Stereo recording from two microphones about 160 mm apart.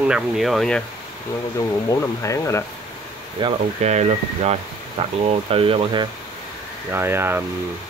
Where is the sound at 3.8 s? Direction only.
45° right (ahead or behind).